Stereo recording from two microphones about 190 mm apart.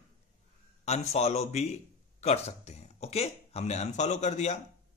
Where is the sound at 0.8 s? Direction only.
35° left (ahead or behind).